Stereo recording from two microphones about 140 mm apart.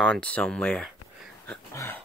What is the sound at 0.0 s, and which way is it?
Speech, 5° left (ahead or behind).